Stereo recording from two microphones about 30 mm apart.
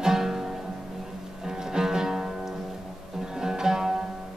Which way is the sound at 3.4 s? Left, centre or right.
Centre.